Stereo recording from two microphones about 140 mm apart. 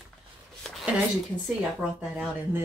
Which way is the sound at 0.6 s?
Centre (ahead or behind).